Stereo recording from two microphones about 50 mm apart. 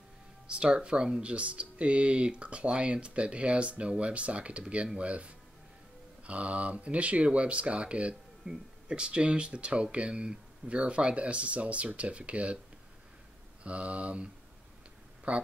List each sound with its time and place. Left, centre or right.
0.5 s speech: centre
13.7 s speech: right